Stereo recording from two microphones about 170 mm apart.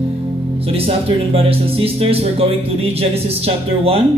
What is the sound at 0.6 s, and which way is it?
A man's voice, 35° right (ahead or behind).